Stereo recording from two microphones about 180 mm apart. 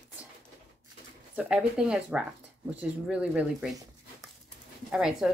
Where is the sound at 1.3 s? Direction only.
5° right (ahead or behind).